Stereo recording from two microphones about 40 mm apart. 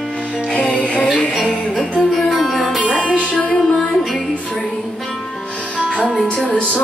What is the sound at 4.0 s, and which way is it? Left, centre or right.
Music, centre.